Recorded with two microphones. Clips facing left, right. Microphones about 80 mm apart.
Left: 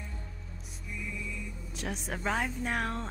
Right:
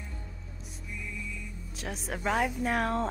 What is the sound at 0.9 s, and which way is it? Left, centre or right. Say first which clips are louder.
A woman's voice: left 1 dB; centre.